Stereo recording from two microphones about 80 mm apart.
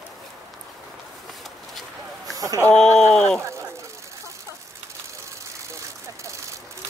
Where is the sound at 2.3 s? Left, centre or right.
Right.